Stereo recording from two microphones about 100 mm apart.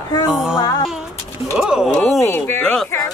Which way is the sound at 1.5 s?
5° right (ahead or behind).